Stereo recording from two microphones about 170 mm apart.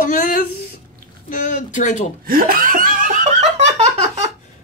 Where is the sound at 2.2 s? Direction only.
55° right (ahead or behind).